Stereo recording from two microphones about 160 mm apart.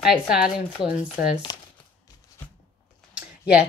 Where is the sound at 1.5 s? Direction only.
25° left (ahead or behind).